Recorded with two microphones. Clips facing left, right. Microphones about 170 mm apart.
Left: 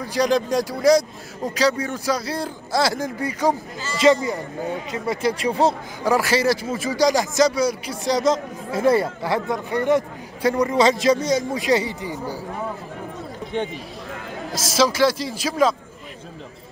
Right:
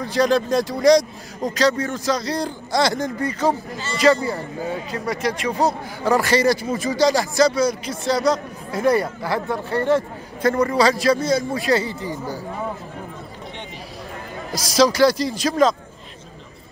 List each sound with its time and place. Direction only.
0.0 s speech: 10° left (ahead or behind); by 5.5 s 30° left (ahead or behind)
6.0 s speech: 5° left (ahead or behind)
14.7 s speech: 5° left (ahead or behind)